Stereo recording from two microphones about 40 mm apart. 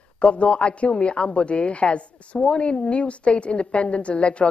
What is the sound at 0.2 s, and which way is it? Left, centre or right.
A woman's voice, left.